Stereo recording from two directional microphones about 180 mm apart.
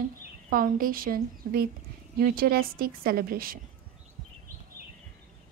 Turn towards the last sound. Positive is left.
turn(degrees=-55)  # may be behind; listen again after turning